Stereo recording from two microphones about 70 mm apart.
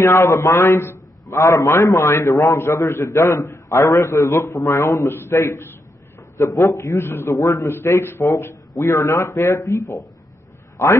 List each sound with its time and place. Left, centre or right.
0.0 s a man's voice: left
1.3 s speech: left
2.0 s a man's voice: left
5.1 s a man's voice: left
7.0 s a man's voice: left
7.3 s speech: left
7.6 s a man's voice: left